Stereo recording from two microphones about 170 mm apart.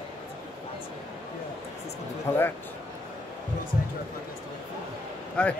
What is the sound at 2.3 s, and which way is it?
Speech, 15° left (ahead or behind).